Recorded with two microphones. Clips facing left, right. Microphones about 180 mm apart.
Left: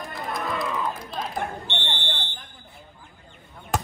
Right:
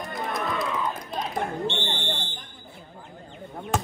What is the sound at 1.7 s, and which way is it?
Fire alarm, 65° left (ahead or behind).